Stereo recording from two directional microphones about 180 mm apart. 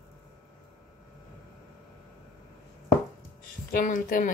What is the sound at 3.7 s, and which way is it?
Speech, 50° left (ahead or behind).